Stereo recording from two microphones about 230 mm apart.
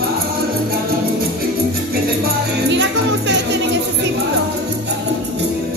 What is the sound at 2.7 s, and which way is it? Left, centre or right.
Music, right.